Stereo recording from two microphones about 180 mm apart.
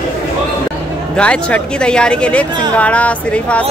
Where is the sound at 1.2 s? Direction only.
5° left (ahead or behind).